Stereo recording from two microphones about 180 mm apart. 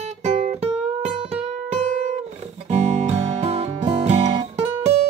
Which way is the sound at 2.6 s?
35° right (ahead or behind).